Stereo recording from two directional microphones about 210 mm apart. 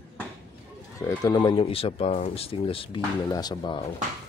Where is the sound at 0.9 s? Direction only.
15° left (ahead or behind).